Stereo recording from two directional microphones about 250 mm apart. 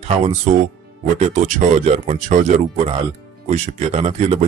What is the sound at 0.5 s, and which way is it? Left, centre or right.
Speech, right.